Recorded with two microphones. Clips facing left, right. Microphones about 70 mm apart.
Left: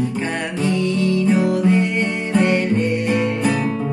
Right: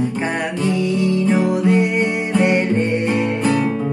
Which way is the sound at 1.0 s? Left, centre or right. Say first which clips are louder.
Even; right.